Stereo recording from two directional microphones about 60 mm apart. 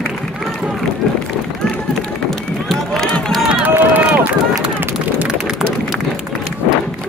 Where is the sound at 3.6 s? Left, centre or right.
Right.